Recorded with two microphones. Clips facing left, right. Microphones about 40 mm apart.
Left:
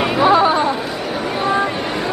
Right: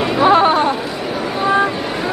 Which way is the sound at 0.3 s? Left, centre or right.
Right.